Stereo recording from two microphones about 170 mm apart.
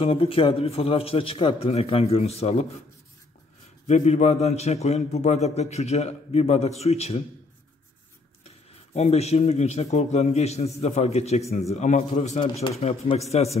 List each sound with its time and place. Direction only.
0.0 s a man's voice: 35° left (ahead or behind)
3.8 s a man's voice: 40° left (ahead or behind)
8.5 s a man's voice: 40° left (ahead or behind)